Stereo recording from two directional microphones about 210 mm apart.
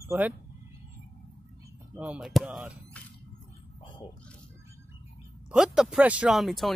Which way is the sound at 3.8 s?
25° left (ahead or behind).